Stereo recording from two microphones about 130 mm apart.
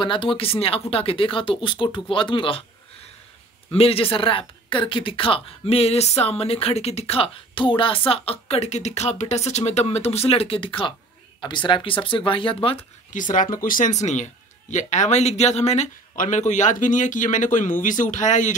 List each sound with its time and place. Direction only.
0.0 s a woman's voice: 40° left (ahead or behind)
3.7 s a woman's voice: 50° left (ahead or behind)
13.1 s a man's voice: 85° left; by 18.5 s 70° left (ahead or behind)